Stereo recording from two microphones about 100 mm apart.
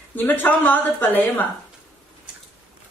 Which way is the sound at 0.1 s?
20° left (ahead or behind).